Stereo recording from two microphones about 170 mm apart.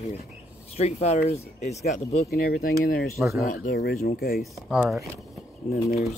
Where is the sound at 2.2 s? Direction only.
60° left (ahead or behind).